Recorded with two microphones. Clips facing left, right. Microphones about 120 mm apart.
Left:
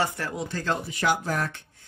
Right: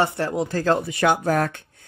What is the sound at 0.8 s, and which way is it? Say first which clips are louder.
Speech: right 6 dB; 65° right (ahead or behind).